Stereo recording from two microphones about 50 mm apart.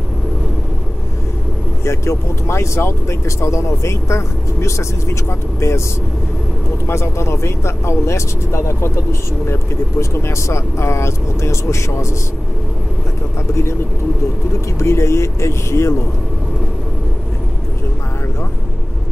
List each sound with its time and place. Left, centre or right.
1.9 s speech: left
6.9 s speech: left
14.8 s speech: left